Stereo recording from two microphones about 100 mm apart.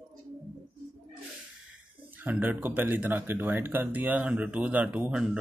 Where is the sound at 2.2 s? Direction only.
15° right (ahead or behind).